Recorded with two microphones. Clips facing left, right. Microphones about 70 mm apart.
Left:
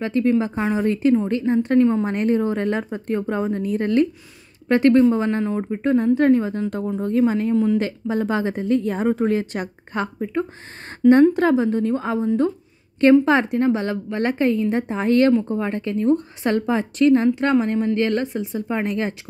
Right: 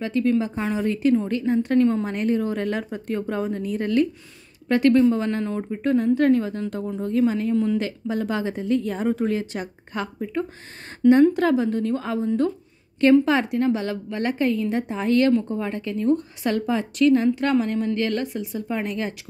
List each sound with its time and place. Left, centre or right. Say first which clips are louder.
0.0 s a woman's voice: left 2 dB; left
1.8 s a woman's voice: left 3 dB; centre
2.0 s a woman's voice: left 3 dB; left
6.7 s a woman's voice: left 3 dB; left
11.0 s a woman's voice: left 2 dB; centre
11.3 s a woman's voice: left 3 dB; left